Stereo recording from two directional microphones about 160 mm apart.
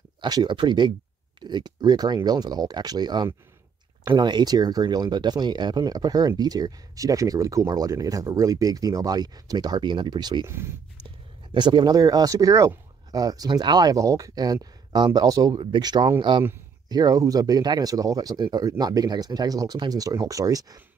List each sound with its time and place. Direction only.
0.2 s speech: 30° right (ahead or behind)
10.4 s speech: 15° right (ahead or behind)
11.5 s speech: 30° right (ahead or behind)